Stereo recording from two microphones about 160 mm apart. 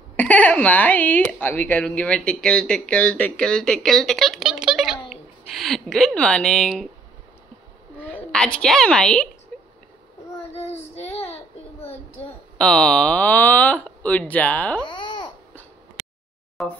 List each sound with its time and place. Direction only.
0.1 s speech: 10° left (ahead or behind)
8.0 s a woman's voice: 5° left (ahead or behind)
10.5 s child singing: 40° left (ahead or behind)
11.3 s a sound: 40° left (ahead or behind)
12.5 s speech: 5° left (ahead or behind)
14.9 s babbling: 30° left (ahead or behind)
16.6 s speech: centre (ahead or behind)